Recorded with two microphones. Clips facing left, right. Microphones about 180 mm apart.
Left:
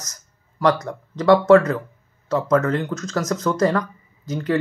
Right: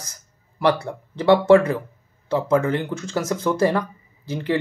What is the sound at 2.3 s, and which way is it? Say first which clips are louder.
Speech: left 1 dB; 25° right (ahead or behind).